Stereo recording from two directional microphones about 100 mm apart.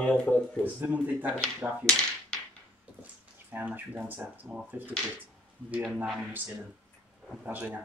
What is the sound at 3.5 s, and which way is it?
Speech, 15° right (ahead or behind).